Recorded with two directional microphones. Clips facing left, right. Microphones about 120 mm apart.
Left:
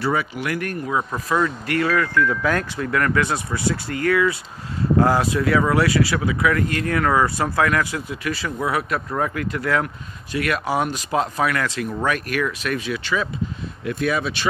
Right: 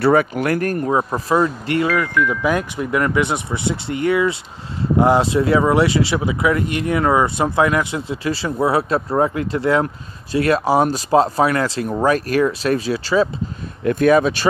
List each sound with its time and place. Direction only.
0.0 s speech: 50° right (ahead or behind); by 13.3 s 30° right (ahead or behind)
13.8 s speech: 45° right (ahead or behind)